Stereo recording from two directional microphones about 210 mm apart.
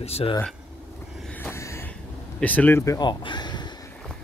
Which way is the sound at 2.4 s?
5° left (ahead or behind).